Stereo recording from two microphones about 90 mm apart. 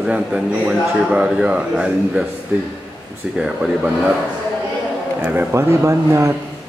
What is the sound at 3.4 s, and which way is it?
Speech, 5° right (ahead or behind).